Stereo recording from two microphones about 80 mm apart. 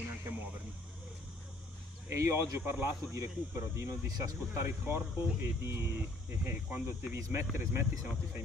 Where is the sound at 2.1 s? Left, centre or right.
Right.